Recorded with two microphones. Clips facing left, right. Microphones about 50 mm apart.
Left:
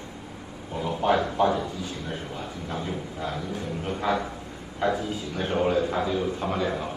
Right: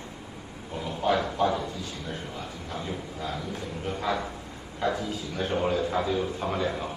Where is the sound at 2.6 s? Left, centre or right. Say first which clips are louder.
Left 3 dB; left.